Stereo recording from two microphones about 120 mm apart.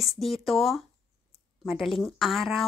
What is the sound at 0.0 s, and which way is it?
A woman's voice, centre (ahead or behind).